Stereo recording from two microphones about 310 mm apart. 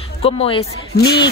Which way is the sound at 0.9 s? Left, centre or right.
Left.